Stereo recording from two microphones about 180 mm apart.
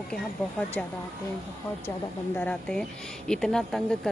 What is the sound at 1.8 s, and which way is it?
Speech, 10° left (ahead or behind).